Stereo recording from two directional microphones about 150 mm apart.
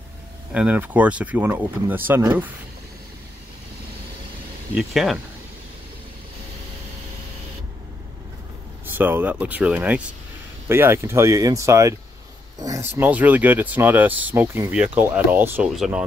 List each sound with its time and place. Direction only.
0.5 s speech: 10° right (ahead or behind)
4.7 s speech: centre (ahead or behind)
8.9 s speech: 10° right (ahead or behind)
15.7 s speech: centre (ahead or behind)